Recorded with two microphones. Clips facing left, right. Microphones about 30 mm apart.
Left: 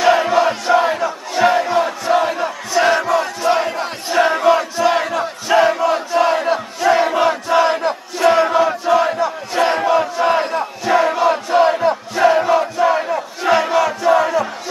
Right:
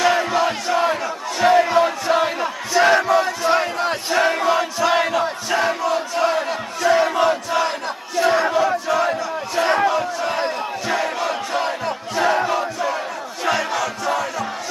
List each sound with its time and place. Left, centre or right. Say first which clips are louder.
0.0 s crowd: left 4 dB; centre
0.7 s battle cry: left 4 dB; centre
1.7 s chant: left 1 dB; centre
2.4 s battle cry: left 1 dB; centre
5.7 s crowd: left 5 dB; centre
6.1 s battle cry: left 5 dB; centre
6.9 s crowd: left 2 dB; centre
9.8 s battle cry: left 5 dB; centre
13.4 s crowd: left 6 dB; centre
14.1 s battle cry: left 8 dB; centre